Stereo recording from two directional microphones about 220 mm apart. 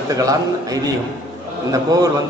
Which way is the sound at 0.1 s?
15° right (ahead or behind).